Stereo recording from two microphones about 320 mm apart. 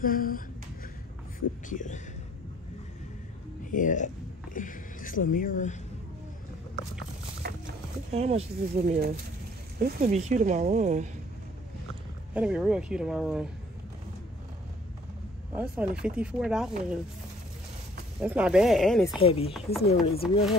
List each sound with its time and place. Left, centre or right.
0.0 s speech: left
1.7 s speech: left
3.7 s speech: left
7.4 s clip-clop: right
8.1 s speech: centre
12.4 s speech: centre
15.5 s speech: centre
18.2 s speech: centre
19.1 s speech: centre